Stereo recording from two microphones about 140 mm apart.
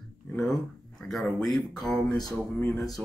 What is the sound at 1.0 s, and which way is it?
Speech, 5° left (ahead or behind).